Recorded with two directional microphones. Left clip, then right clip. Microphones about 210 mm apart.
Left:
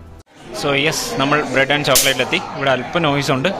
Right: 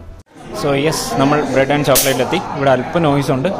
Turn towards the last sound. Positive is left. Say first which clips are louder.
# right 1 dB
turn(degrees=-5)  # may be behind; listen again after turning